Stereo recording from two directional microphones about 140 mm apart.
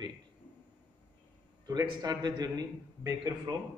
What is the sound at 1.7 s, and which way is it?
A man's voice, 30° right (ahead or behind).